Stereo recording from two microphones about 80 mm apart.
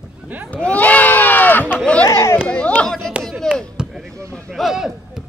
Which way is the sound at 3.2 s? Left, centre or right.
Centre.